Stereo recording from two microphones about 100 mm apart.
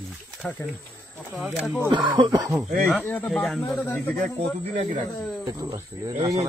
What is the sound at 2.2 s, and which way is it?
Speech, 40° right (ahead or behind).